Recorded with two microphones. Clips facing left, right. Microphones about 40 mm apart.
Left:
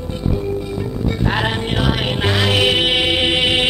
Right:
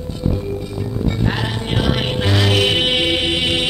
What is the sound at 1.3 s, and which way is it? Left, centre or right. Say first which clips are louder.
Music: left 4 dB; left.